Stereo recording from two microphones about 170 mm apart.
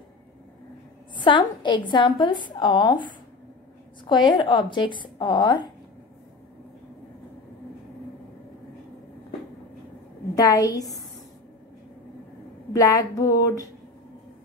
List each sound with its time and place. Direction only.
1.2 s a woman's voice: 30° left (ahead or behind)
10.3 s a woman's voice: 20° left (ahead or behind)
12.7 s a woman's voice: 20° left (ahead or behind)